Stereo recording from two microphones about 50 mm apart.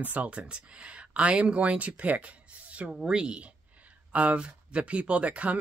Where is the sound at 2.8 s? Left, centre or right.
Centre.